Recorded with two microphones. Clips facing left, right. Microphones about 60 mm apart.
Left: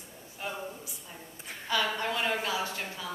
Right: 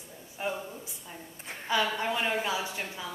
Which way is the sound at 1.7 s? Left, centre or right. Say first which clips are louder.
Right 2 dB; centre.